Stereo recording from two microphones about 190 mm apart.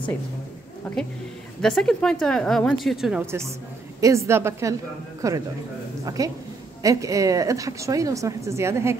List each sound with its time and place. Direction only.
0.9 s speech: 10° left (ahead or behind); by 8.9 s 15° right (ahead or behind)